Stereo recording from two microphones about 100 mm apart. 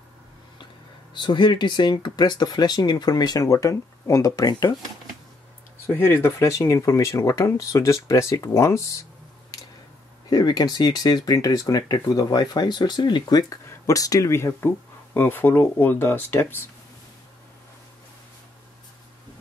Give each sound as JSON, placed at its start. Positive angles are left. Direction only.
{"t": 1.1, "sound": "speech", "side_deg": 50}
{"t": 5.9, "sound": "speech", "side_deg": 20}
{"t": 10.3, "sound": "speech", "side_deg": 40}